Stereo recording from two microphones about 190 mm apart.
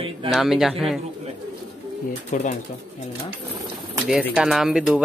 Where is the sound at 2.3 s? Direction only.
40° left (ahead or behind).